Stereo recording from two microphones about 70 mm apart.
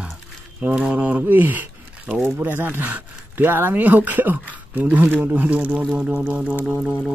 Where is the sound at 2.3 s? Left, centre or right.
Right.